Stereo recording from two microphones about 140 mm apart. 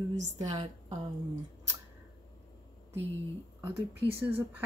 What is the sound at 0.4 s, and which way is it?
Speech, 30° right (ahead or behind).